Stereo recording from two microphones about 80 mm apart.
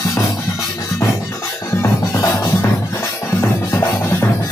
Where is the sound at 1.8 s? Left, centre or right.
Left.